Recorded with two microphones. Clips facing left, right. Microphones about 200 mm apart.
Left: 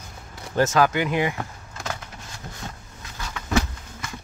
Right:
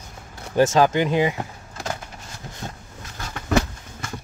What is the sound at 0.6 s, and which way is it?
Speech, 25° right (ahead or behind).